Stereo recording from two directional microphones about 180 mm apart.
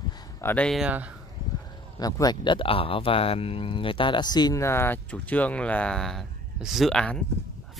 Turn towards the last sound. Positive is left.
turn(degrees=5)  # may be behind; listen again after turning